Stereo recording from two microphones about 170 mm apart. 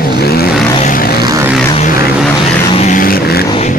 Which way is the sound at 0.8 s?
55° left (ahead or behind).